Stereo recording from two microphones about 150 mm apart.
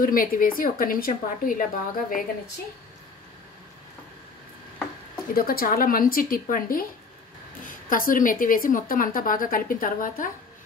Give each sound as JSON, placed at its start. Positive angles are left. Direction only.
{"t": 0.0, "sound": "a woman's voice", "side_deg": 70}
{"t": 5.3, "sound": "a woman's voice", "side_deg": 80}